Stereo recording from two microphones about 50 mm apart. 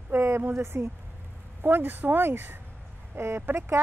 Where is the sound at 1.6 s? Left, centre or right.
Right.